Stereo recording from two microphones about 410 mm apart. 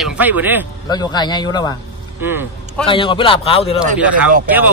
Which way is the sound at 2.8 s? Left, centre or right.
Centre.